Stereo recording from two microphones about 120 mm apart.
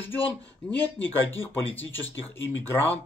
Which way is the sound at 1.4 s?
20° left (ahead or behind).